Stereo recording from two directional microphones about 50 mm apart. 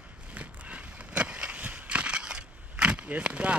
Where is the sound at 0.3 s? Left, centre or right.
Right.